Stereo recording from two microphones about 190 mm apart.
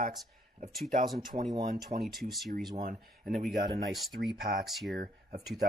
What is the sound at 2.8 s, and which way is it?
Speech, 40° right (ahead or behind).